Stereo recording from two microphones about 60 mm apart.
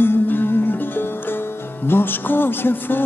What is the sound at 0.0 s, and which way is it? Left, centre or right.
Music, left.